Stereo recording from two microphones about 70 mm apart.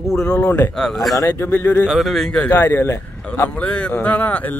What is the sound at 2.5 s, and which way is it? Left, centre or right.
Speech, left.